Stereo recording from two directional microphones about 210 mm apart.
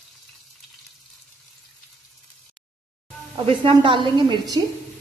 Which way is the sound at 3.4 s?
25° right (ahead or behind).